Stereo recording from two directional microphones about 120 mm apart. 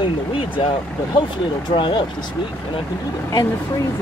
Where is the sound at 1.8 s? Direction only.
40° left (ahead or behind).